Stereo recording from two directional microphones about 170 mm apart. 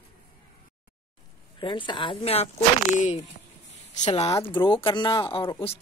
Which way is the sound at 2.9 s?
45° left (ahead or behind).